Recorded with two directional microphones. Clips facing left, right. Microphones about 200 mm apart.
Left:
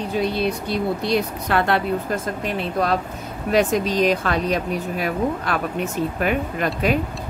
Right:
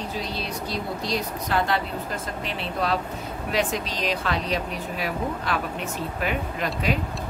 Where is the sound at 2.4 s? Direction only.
50° left (ahead or behind).